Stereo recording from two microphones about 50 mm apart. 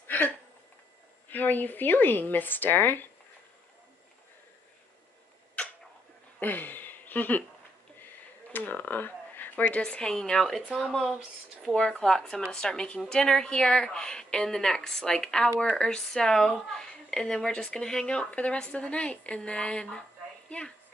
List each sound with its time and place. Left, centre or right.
0.0 s a sound: left
1.3 s speech: left
6.4 s speech: left
8.5 s speech: left
9.8 s a woman's voice: centre
11.7 s a woman's voice: centre
18.0 s a woman's voice: left